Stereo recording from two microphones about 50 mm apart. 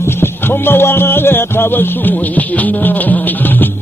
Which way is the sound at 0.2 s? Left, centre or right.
Left.